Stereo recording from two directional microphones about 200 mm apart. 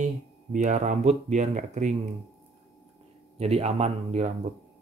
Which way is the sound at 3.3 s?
30° right (ahead or behind).